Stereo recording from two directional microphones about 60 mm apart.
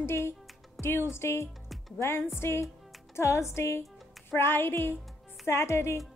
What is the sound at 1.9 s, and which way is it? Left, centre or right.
Music, left.